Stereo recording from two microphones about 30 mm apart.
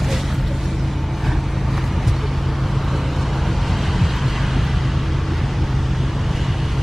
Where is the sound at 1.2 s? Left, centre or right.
Centre.